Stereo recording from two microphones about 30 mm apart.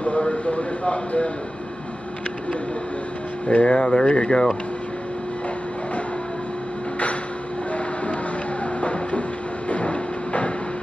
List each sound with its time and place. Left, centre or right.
0.2 s speech: left
3.4 s speech: left
9.7 s vehicle: left